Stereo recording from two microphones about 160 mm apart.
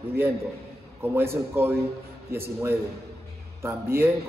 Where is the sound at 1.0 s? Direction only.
15° right (ahead or behind).